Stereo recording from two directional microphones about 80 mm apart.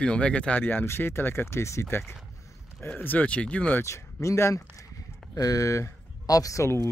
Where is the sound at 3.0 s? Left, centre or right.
Left.